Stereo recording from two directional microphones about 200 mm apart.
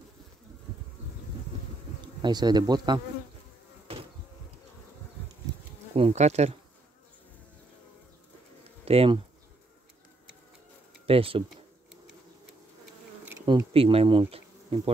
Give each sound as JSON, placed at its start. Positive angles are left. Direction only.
{"t": 2.2, "sound": "speech", "side_deg": -20}
{"t": 5.9, "sound": "bee", "side_deg": -30}
{"t": 8.8, "sound": "speech", "side_deg": -30}
{"t": 11.1, "sound": "speech", "side_deg": -25}
{"t": 13.5, "sound": "bee", "side_deg": -25}